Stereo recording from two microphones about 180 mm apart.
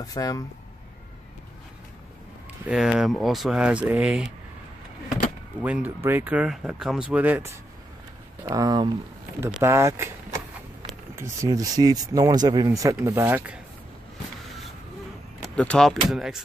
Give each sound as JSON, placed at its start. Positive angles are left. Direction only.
{"t": 0.0, "sound": "speech", "side_deg": 20}
{"t": 2.6, "sound": "speech", "side_deg": -5}
{"t": 5.6, "sound": "speech", "side_deg": -10}
{"t": 8.5, "sound": "speech", "side_deg": -20}
{"t": 15.4, "sound": "speech", "side_deg": 5}